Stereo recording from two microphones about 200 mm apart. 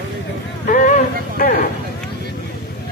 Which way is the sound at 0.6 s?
40° left (ahead or behind).